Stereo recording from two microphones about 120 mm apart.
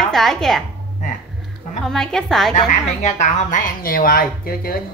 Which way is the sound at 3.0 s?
85° left.